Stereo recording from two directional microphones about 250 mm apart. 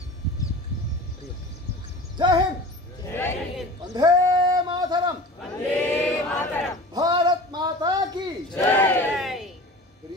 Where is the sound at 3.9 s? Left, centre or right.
Centre.